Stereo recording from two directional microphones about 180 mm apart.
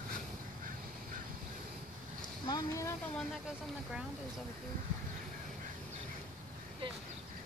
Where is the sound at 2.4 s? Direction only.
20° left (ahead or behind).